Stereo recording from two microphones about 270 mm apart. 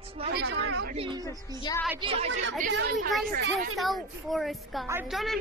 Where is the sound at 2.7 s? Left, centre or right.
Right.